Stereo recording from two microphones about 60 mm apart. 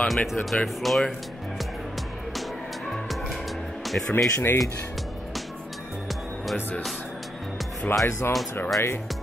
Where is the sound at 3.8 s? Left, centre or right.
Centre.